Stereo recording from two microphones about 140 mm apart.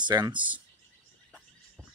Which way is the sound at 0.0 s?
30° right (ahead or behind).